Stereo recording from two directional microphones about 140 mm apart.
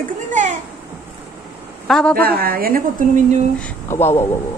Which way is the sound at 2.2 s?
90° right.